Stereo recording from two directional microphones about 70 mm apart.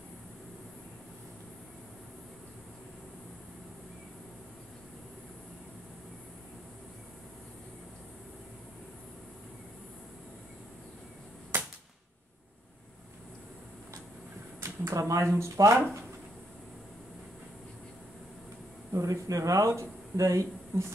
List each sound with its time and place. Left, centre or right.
14.6 s speech: right
18.9 s speech: right